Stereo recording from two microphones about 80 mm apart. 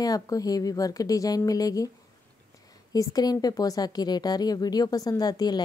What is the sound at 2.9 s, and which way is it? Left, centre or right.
Speech, left.